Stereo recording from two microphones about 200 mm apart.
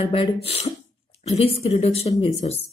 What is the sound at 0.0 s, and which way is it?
Speech, 30° left (ahead or behind).